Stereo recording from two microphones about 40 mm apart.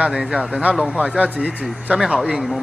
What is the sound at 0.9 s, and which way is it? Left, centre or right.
Speech, right.